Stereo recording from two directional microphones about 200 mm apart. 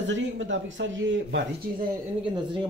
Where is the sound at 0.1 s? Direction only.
65° right (ahead or behind).